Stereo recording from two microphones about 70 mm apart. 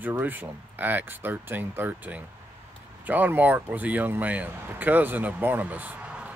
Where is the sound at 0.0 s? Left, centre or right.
Right.